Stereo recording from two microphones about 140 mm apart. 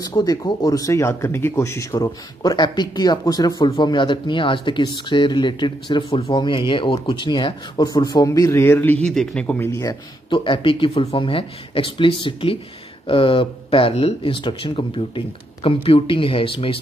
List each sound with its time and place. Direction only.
0.0 s speech: 25° left (ahead or behind); by 9.7 s 10° left (ahead or behind)
9.7 s speech: 25° left (ahead or behind)
10.3 s speech: 35° left (ahead or behind)